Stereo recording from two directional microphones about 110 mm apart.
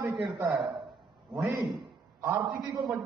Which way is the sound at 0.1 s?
Centre (ahead or behind).